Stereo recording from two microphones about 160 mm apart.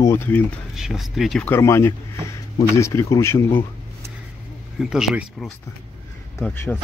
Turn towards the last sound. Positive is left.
turn(degrees=5)  # may be behind; listen again after turning